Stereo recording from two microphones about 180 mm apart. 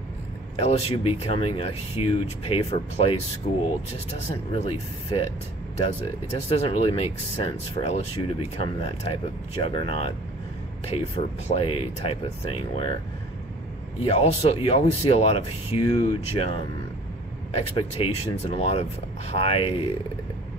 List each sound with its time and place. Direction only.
0.6 s speech: 35° left (ahead or behind)
6.3 s speech: 35° left (ahead or behind)
14.0 s speech: 35° left (ahead or behind)
17.6 s speech: 35° left (ahead or behind)